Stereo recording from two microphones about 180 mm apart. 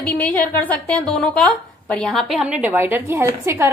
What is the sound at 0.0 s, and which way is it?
Speech, 10° left (ahead or behind).